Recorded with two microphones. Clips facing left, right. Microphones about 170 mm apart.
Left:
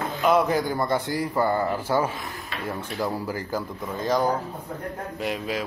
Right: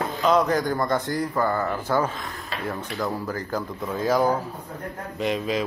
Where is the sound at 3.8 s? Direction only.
5° right (ahead or behind).